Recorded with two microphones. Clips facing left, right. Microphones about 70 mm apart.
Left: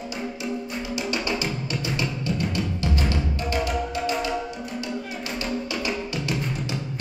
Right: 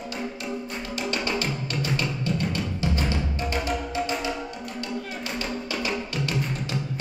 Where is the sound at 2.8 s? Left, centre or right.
Right.